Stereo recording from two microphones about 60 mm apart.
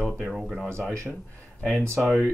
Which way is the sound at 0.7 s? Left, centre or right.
Centre.